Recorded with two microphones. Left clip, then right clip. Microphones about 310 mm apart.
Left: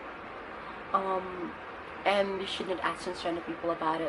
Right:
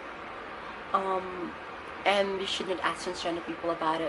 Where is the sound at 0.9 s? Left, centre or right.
Left.